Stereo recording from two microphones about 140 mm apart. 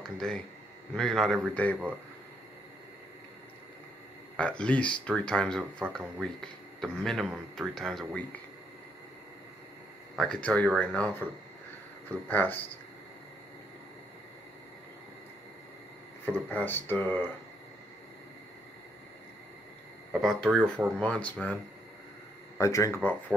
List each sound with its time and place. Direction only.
0.0 s speech: 5° left (ahead or behind)
4.4 s speech: 10° left (ahead or behind)
10.1 s speech: 5° left (ahead or behind)
12.3 s speech: 15° left (ahead or behind)
16.3 s speech: 10° left (ahead or behind)
20.1 s speech: centre (ahead or behind)
22.6 s speech: 20° left (ahead or behind)